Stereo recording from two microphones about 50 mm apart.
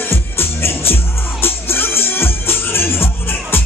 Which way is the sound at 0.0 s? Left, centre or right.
Left.